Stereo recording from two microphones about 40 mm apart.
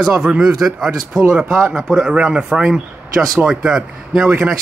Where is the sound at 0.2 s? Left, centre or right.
Right.